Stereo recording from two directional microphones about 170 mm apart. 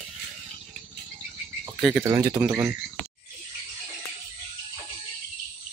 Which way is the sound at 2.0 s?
20° right (ahead or behind).